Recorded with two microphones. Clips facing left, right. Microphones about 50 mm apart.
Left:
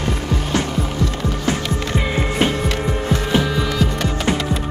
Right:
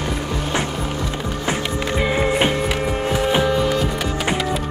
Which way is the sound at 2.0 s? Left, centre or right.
Centre.